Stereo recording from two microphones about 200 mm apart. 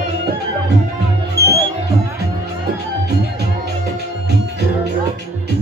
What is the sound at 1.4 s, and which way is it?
Music, 55° right (ahead or behind).